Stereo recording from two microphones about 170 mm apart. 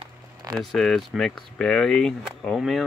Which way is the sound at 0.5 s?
Centre (ahead or behind).